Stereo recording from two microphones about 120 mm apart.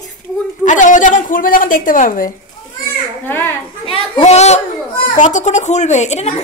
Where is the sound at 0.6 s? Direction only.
90° left.